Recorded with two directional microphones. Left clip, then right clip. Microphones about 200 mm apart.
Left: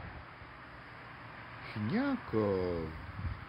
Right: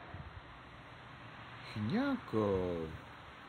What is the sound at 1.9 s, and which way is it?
Speech, centre (ahead or behind).